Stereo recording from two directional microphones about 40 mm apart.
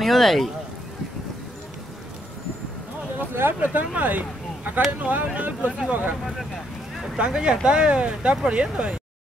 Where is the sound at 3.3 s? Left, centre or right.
Right.